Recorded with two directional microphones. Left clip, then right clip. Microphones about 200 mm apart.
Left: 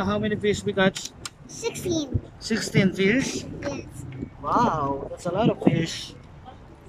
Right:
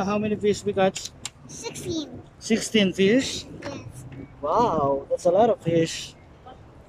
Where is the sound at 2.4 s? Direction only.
15° right (ahead or behind).